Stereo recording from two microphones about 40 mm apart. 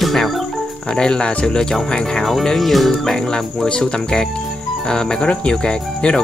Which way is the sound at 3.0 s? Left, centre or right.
Centre.